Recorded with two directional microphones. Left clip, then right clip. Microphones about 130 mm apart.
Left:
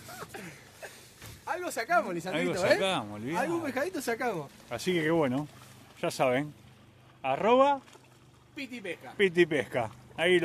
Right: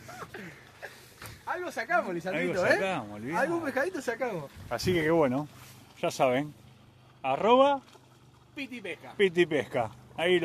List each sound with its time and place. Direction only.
0.3 s a sound: 25° left (ahead or behind)
1.4 s speech: 20° left (ahead or behind)
4.0 s speech: 75° left (ahead or behind)
4.6 s speech: centre (ahead or behind)
5.0 s speech: 15° left (ahead or behind)